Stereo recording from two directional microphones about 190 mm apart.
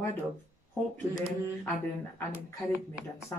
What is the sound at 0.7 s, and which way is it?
Speech, 15° left (ahead or behind).